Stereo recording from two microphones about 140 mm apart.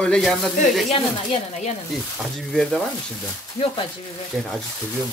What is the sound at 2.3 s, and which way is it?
Speech, 5° left (ahead or behind).